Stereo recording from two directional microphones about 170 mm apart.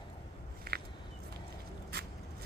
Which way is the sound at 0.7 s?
65° right (ahead or behind).